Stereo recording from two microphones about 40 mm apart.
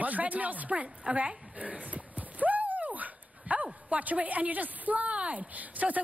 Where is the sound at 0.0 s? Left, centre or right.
Right.